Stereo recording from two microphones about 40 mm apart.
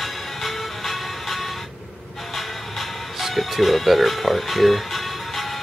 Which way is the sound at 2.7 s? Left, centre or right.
Centre.